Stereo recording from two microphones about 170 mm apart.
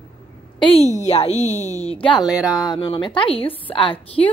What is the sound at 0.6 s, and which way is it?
A woman's voice, 35° left (ahead or behind).